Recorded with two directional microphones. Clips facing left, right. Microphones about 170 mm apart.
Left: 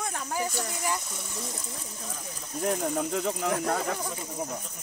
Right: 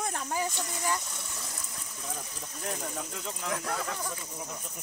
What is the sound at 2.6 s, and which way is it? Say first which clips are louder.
Speech: left 9 dB; 55° left (ahead or behind).